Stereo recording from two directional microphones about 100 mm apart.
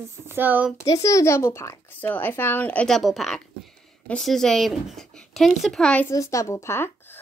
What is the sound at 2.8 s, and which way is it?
Speech, centre (ahead or behind).